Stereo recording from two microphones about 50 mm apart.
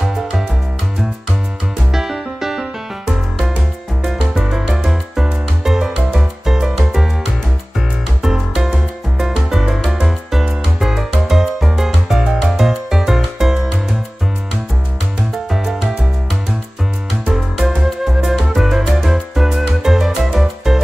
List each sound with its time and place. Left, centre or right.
0.0 s music: centre
1.9 s music: centre
4.4 s music: centre
8.2 s music: centre
15.5 s music: centre
17.3 s music: centre